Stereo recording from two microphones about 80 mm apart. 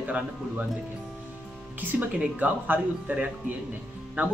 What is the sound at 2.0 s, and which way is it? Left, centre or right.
Speech, right.